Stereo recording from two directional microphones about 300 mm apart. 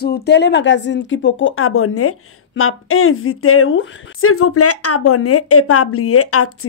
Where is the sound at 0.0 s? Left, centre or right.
Left.